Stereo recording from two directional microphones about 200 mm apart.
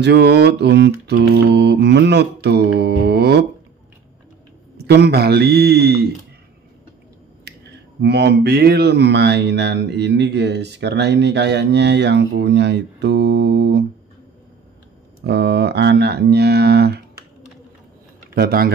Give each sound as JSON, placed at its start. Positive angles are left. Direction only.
{"t": 0.0, "sound": "speech", "side_deg": -55}
{"t": 4.7, "sound": "speech", "side_deg": -55}
{"t": 8.0, "sound": "speech", "side_deg": -55}
{"t": 15.2, "sound": "speech", "side_deg": -55}
{"t": 18.3, "sound": "speech", "side_deg": -50}